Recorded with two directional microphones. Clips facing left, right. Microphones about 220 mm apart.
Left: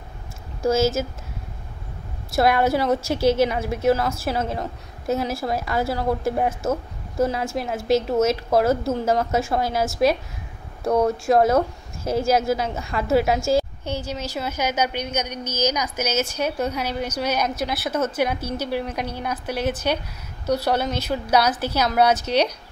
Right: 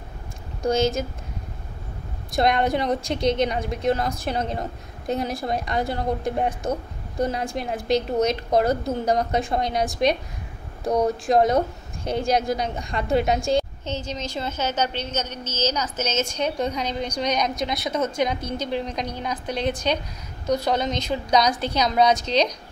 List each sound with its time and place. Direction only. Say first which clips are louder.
0.6 s speech: left 2 dB; 5° left (ahead or behind)
2.3 s a woman's voice: left 2 dB; 5° left (ahead or behind)
10.8 s speech: left 2 dB; 20° right (ahead or behind)
11.1 s a woman's voice: even; 5° left (ahead or behind)